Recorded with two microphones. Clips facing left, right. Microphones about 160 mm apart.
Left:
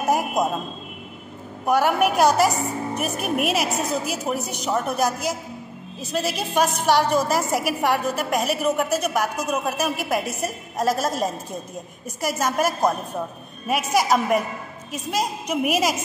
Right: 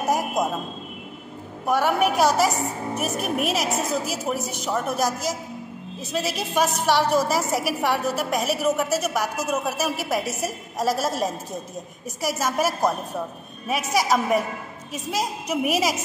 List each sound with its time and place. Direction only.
1.7 s a woman's voice: centre (ahead or behind)
6.1 s a woman's voice: centre (ahead or behind)